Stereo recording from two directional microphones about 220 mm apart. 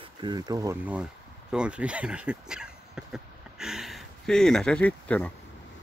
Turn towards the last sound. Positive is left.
turn(degrees=5)  # may be behind; listen again after turning